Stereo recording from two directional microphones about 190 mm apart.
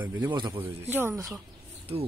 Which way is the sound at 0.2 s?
20° right (ahead or behind).